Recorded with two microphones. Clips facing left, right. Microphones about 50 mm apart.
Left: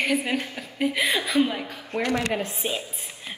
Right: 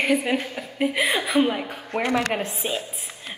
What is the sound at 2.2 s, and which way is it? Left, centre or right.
Speech, right.